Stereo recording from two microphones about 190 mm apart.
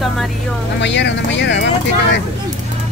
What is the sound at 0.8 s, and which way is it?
Speech, 70° left (ahead or behind).